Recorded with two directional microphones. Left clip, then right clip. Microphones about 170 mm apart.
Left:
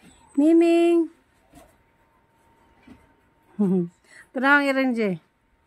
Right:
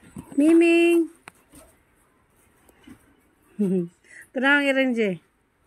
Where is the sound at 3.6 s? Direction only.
25° left (ahead or behind).